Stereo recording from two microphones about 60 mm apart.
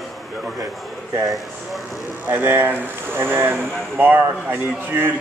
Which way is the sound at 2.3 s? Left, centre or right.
Right.